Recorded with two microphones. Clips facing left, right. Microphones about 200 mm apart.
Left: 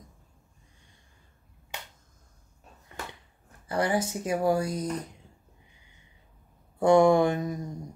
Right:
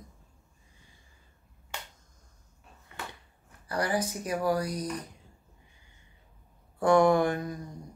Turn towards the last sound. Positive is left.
turn(degrees=20)  # may be behind; listen again after turning